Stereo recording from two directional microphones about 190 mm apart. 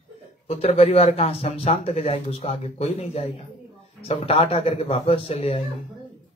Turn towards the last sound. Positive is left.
turn(degrees=30)  # may be behind; listen again after turning